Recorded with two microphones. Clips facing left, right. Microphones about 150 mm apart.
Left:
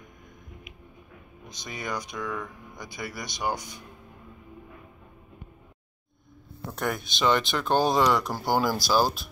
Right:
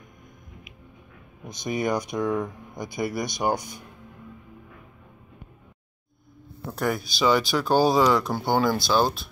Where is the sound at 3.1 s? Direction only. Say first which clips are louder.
Right 6 dB; 50° right (ahead or behind).